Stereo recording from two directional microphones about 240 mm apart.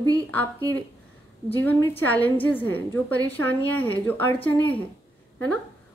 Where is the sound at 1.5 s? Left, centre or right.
Centre.